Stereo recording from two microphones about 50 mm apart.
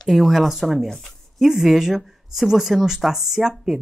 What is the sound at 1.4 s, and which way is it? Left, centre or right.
Speech, centre.